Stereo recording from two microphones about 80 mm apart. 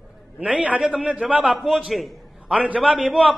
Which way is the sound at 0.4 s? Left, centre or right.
Centre.